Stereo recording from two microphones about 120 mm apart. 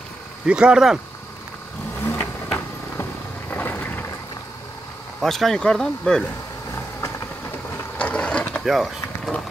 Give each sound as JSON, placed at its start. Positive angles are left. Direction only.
{"t": 0.5, "sound": "speech", "side_deg": -10}
{"t": 2.0, "sound": "vehicle", "side_deg": 15}
{"t": 5.2, "sound": "speech", "side_deg": 5}
{"t": 7.7, "sound": "vehicle", "side_deg": 10}
{"t": 8.6, "sound": "speech", "side_deg": 0}